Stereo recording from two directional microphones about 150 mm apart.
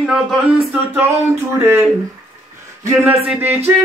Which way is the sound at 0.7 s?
15° right (ahead or behind).